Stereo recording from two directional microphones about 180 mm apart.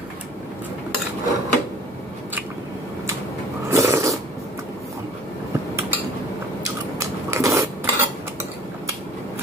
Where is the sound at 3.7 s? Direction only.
15° right (ahead or behind).